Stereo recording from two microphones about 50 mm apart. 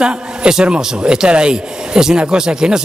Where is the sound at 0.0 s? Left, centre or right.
Centre.